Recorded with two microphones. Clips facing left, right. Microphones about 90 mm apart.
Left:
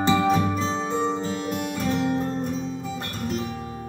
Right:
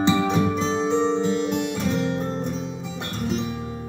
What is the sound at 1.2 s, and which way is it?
Music, 45° left (ahead or behind).